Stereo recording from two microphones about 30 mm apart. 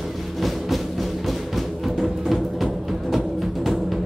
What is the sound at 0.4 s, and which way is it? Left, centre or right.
Music, centre.